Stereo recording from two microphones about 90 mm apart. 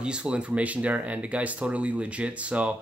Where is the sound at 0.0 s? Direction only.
10° right (ahead or behind).